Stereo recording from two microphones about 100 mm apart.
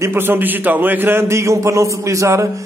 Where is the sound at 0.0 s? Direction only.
20° right (ahead or behind).